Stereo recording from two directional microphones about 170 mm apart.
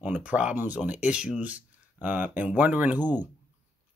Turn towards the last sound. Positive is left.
turn(degrees=-10)  # may be behind; listen again after turning